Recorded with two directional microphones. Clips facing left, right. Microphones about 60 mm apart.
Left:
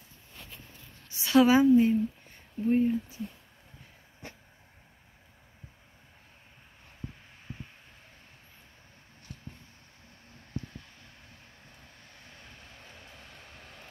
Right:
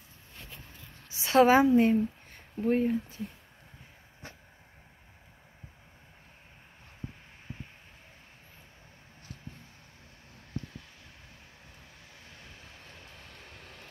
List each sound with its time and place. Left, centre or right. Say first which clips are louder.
1.2 s a woman's voice: right 1 dB; right
1.6 s speech: left 1 dB; right
12.3 s vehicle: even; centre